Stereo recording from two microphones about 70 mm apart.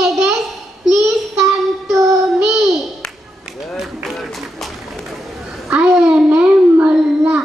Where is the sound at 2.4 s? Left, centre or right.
Centre.